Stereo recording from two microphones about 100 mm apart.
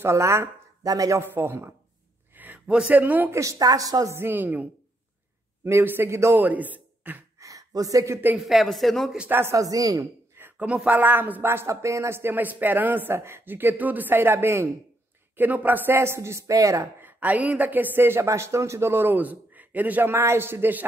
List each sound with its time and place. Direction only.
0.0 s a woman's voice: 25° right (ahead or behind)
1.2 s speech: 20° right (ahead or behind)
3.3 s a woman's voice: 35° right (ahead or behind); by 7.2 s 20° right (ahead or behind)
7.3 s speech: 35° right (ahead or behind)
8.4 s a man's voice: centre (ahead or behind)
9.3 s a woman's voice: 25° right (ahead or behind)
10.3 s a sound: 20° right (ahead or behind)
10.9 s speech: 20° right (ahead or behind)
17.0 s speech: 15° right (ahead or behind)